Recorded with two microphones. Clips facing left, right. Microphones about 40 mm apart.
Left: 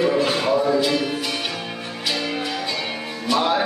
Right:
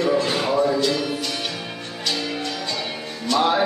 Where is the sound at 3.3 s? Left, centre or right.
Centre.